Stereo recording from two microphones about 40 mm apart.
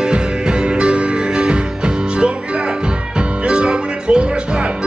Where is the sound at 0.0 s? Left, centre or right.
Right.